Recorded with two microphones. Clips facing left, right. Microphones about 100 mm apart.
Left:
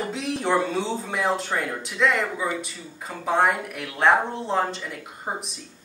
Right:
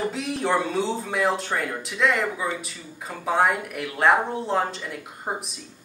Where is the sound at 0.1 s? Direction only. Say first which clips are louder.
Left 1 dB; centre (ahead or behind).